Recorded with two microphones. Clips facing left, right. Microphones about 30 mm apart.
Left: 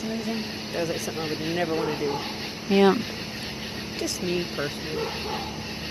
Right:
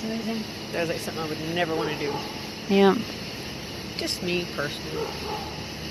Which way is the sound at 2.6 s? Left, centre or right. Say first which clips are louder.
Even; centre.